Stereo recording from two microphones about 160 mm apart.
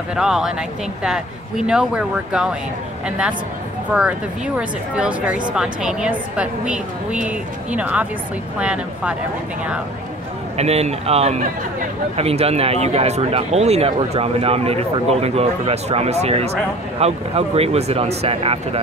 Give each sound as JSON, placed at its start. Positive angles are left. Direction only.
{"t": 0.1, "sound": "speech", "side_deg": -5}
{"t": 4.6, "sound": "a woman's voice", "side_deg": -5}
{"t": 10.6, "sound": "speech", "side_deg": -40}